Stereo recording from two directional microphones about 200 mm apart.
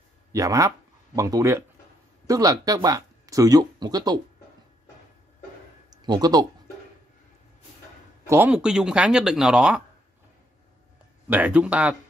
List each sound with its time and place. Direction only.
0.3 s speech: 15° right (ahead or behind)
5.9 s a sound: 20° right (ahead or behind)
8.3 s speech: 10° right (ahead or behind)
11.2 s speech: 10° right (ahead or behind)